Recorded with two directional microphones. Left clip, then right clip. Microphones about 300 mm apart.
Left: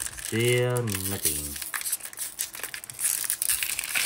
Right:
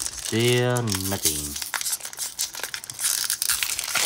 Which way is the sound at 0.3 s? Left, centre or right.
Centre.